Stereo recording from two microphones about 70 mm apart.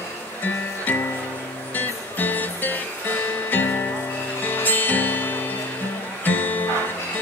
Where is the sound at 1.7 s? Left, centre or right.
Left.